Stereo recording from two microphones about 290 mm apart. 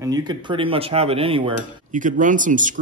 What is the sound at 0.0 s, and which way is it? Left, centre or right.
Cutlery, centre.